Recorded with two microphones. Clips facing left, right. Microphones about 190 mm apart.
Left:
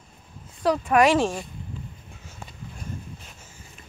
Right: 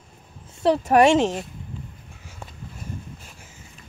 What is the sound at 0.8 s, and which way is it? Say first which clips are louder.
Speech: right 3 dB; 35° right (ahead or behind).